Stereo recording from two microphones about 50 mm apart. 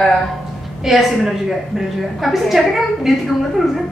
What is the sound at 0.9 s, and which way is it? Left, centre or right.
Speech, centre.